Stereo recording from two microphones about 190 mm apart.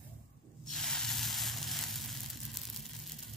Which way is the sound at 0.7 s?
Centre (ahead or behind).